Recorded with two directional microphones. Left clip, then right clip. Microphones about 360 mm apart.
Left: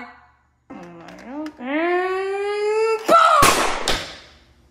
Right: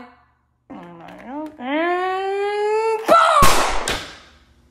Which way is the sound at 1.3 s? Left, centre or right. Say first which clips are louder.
Right 1 dB; right.